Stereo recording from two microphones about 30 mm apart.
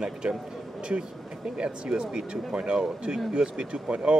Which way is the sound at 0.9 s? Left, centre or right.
Right.